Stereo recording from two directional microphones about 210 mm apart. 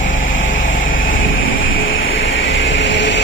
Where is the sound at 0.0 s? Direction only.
65° left (ahead or behind).